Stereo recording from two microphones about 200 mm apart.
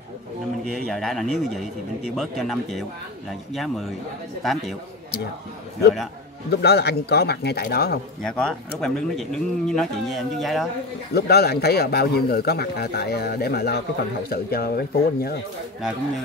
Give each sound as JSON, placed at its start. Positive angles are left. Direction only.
{"t": 0.8, "sound": "speech", "side_deg": 0}
{"t": 6.5, "sound": "a man's voice", "side_deg": 55}
{"t": 8.2, "sound": "speech", "side_deg": 5}
{"t": 11.1, "sound": "a man's voice", "side_deg": 55}